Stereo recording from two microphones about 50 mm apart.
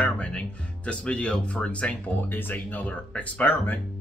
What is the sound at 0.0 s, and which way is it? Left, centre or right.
Speech, left.